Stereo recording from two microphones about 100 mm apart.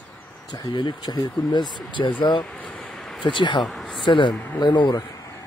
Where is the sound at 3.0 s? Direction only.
Centre (ahead or behind).